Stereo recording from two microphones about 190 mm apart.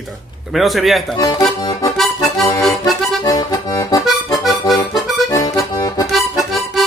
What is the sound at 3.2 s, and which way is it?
Accordion, 20° left (ahead or behind).